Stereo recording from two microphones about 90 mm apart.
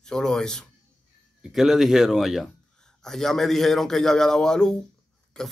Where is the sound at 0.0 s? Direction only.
5° left (ahead or behind).